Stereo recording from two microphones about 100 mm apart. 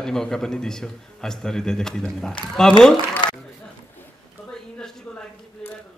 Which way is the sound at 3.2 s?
55° left (ahead or behind).